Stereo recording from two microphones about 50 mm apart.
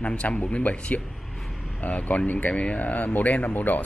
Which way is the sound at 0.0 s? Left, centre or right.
Left.